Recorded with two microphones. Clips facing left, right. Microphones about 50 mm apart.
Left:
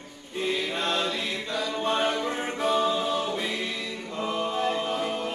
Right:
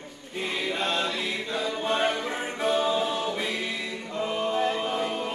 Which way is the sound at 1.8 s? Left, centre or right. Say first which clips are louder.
Left 1 dB; centre.